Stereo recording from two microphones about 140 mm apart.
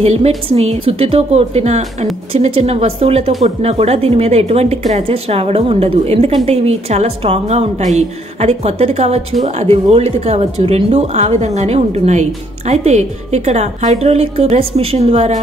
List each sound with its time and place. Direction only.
0.0 s speech: 50° right (ahead or behind)